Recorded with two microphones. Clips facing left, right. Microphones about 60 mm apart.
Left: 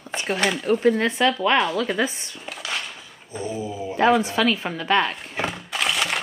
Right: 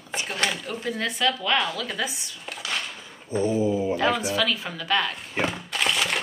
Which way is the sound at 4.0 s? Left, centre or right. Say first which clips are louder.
Left 11 dB; left.